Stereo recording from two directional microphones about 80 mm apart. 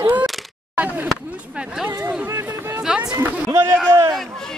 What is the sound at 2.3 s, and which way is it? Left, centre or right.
Chatter, right.